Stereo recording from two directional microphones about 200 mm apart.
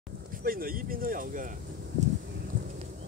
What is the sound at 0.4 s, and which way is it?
Speech, 45° right (ahead or behind).